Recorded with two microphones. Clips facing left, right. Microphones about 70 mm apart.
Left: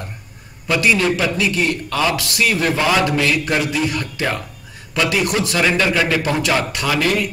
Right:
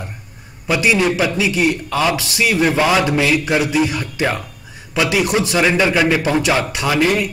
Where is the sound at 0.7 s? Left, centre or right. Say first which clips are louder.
Right 1 dB; centre.